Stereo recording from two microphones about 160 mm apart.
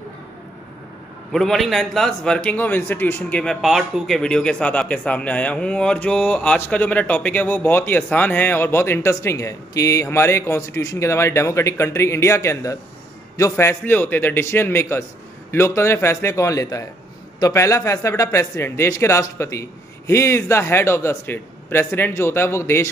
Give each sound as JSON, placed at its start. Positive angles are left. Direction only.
{"t": 1.3, "sound": "a man's voice", "side_deg": 0}